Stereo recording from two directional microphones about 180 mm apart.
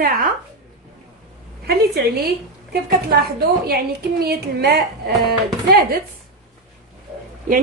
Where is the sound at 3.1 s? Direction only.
60° right (ahead or behind).